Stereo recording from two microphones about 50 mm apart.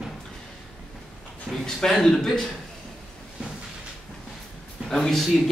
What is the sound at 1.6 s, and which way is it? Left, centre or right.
Speech, centre.